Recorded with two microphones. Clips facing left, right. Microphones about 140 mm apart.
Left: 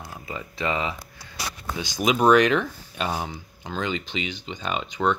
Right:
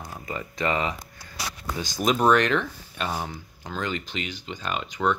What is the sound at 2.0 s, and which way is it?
Speech, 5° left (ahead or behind).